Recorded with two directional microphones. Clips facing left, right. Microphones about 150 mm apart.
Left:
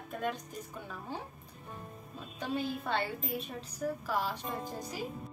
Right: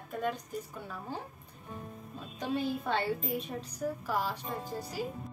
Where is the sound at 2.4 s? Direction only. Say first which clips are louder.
Right 2 dB; 10° right (ahead or behind).